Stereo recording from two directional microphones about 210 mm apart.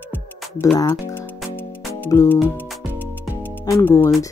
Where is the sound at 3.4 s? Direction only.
10° left (ahead or behind).